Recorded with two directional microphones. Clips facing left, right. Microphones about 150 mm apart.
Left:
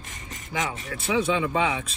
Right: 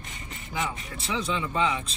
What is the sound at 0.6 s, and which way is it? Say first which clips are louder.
Speech: left 2 dB; 90° left.